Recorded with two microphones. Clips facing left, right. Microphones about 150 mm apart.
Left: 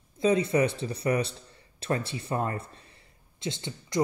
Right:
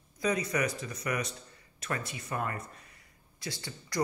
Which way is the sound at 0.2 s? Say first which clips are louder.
Left 7 dB; 25° left (ahead or behind).